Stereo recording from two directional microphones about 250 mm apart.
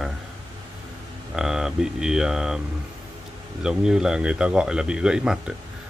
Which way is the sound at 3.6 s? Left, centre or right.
Centre.